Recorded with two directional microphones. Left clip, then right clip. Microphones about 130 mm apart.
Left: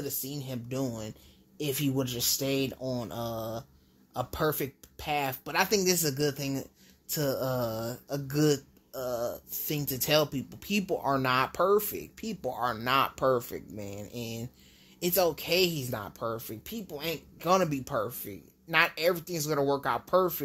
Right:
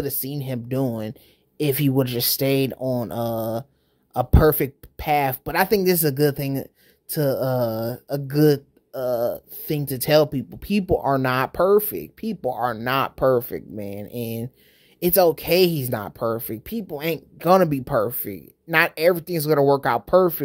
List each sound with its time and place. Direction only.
0.0 s speech: 60° right (ahead or behind)
5.5 s speech: 40° right (ahead or behind); by 18.4 s 65° right (ahead or behind)
18.7 s speech: 45° right (ahead or behind)